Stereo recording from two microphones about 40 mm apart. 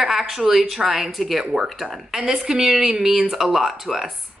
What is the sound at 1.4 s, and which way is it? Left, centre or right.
Speech, centre.